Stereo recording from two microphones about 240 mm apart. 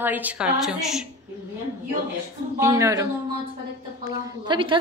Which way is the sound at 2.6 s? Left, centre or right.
Centre.